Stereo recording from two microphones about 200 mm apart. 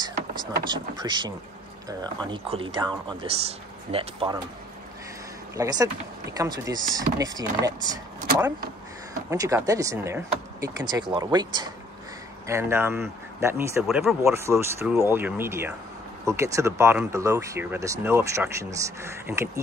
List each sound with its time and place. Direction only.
0.7 s speech: 20° right (ahead or behind)
5.6 s speech: 20° right (ahead or behind)
9.3 s speech: 15° right (ahead or behind)
13.8 s speech: centre (ahead or behind)
14.2 s speech: 15° right (ahead or behind)